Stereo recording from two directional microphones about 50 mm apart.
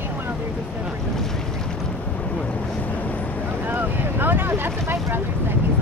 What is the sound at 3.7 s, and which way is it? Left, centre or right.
Speech, right.